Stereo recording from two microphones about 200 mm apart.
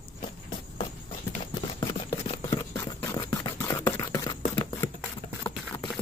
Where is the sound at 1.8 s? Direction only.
20° left (ahead or behind).